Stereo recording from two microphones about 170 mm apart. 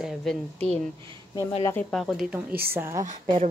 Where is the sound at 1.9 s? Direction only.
Centre (ahead or behind).